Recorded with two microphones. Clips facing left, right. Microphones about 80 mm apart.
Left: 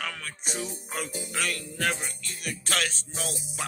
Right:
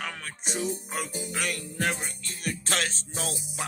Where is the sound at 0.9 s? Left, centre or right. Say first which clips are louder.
Even; centre; by 3.3 s right.